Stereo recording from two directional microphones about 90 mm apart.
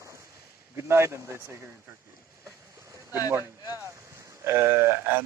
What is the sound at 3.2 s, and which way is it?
Speech, 25° right (ahead or behind).